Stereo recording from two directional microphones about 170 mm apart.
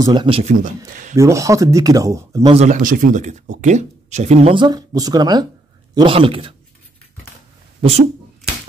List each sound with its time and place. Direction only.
0.0 s speech: 25° right (ahead or behind)
0.4 s speech: 45° right (ahead or behind)
1.1 s speech: 20° right (ahead or behind)
2.5 s speech: 45° right (ahead or behind)